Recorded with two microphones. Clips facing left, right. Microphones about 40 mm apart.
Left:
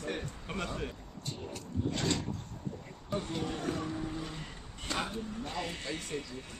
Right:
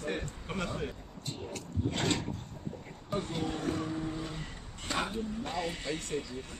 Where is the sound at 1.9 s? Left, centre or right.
Right.